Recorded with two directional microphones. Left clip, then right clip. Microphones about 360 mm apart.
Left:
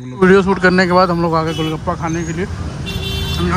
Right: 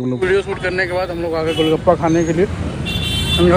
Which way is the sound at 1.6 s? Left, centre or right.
Centre.